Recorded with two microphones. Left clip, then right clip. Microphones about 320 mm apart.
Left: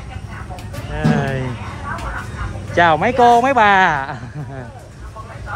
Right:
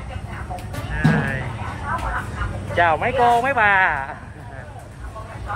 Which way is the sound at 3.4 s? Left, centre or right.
Centre.